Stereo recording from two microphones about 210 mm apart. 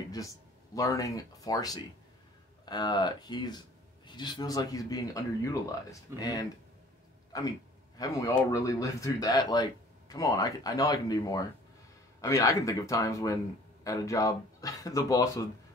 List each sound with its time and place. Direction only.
0.7 s speech: 15° left (ahead or behind)
8.0 s speech: 15° left (ahead or behind)